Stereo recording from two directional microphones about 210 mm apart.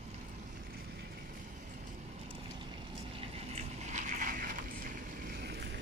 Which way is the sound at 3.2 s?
30° right (ahead or behind).